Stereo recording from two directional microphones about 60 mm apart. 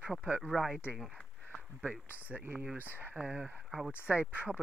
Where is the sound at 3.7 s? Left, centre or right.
Centre.